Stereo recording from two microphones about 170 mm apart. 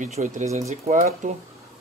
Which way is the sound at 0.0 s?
45° right (ahead or behind).